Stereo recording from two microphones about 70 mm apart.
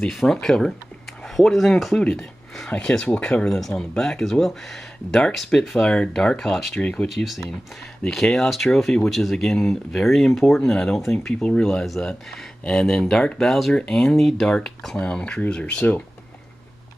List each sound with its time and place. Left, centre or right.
0.0 s speech: centre
7.1 s speech: centre